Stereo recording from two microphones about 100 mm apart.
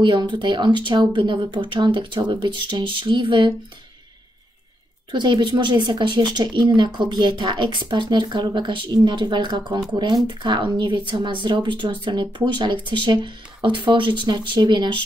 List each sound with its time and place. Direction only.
0.0 s speech: 50° right (ahead or behind)
5.1 s speech: 50° right (ahead or behind)